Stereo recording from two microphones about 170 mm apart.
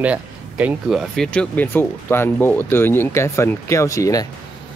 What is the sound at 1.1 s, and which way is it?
Speech, 5° left (ahead or behind).